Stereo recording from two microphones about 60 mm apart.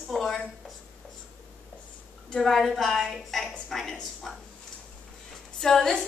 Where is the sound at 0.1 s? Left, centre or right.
Centre.